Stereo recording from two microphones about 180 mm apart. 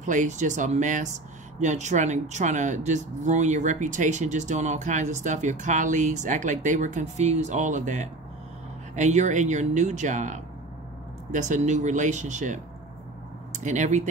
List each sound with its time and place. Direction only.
0.0 s speech: 45° right (ahead or behind)